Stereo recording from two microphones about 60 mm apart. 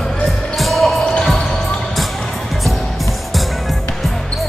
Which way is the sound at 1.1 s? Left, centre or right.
Centre.